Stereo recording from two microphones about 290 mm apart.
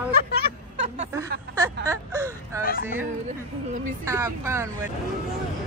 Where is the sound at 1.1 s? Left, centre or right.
Centre.